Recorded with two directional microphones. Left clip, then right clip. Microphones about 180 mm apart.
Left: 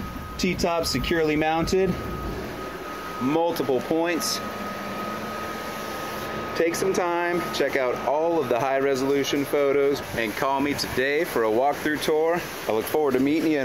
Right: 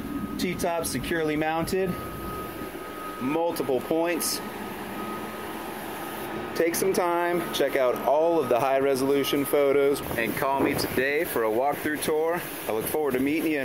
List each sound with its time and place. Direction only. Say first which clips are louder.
0.4 s speech: left 4 dB; centre (ahead or behind)
3.5 s speech: left 2 dB; centre (ahead or behind)
6.6 s speech: left 1 dB; 25° right (ahead or behind)
10.1 s speech: left 1 dB; 5° right (ahead or behind)